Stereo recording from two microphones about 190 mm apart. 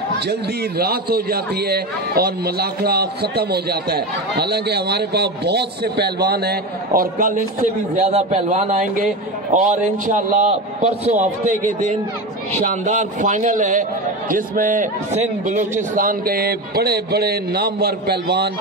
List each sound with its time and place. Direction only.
0.3 s a man's voice: 55° right (ahead or behind)